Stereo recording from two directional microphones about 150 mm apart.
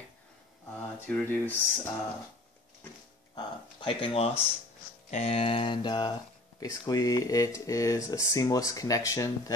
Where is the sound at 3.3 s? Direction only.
35° left (ahead or behind).